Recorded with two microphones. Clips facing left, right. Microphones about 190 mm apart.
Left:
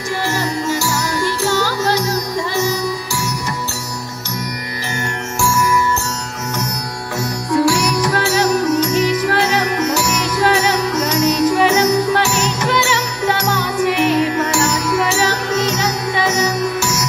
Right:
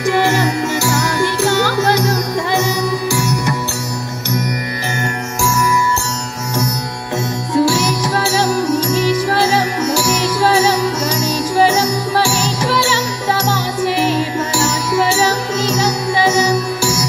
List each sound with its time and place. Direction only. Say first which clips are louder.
0.7 s music: right 3 dB; 60° right (ahead or behind)
7.5 s music: even; 25° right (ahead or behind)